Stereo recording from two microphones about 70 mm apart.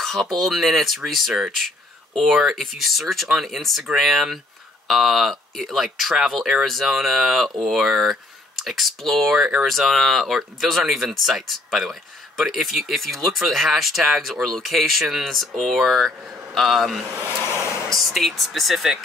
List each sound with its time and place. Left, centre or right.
0.0 s speech: centre
17.5 s a sound: left
17.9 s speech: centre